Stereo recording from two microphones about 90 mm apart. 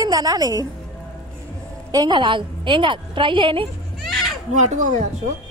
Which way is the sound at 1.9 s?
55° right (ahead or behind).